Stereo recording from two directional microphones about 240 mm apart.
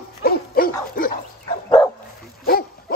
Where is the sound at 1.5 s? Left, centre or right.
Centre.